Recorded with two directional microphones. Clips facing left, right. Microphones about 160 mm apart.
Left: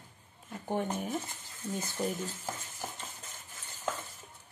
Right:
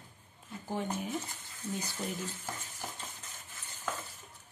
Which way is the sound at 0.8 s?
55° left (ahead or behind).